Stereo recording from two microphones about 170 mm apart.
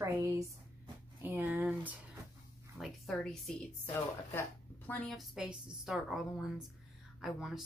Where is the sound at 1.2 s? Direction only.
10° right (ahead or behind).